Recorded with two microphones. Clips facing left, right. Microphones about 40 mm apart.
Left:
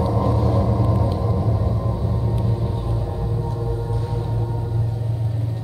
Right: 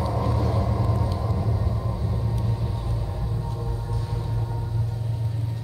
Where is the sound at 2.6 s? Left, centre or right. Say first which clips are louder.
Left 5 dB; centre.